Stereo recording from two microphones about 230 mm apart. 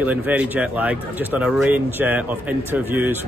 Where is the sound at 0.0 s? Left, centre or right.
Centre.